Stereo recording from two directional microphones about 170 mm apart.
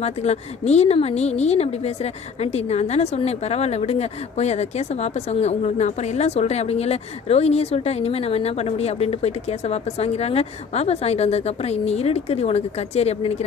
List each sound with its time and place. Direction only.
0.0 s a woman's voice: 40° left (ahead or behind)